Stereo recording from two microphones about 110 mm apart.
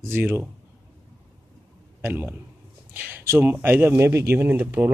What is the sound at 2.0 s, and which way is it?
A man's voice, 20° right (ahead or behind).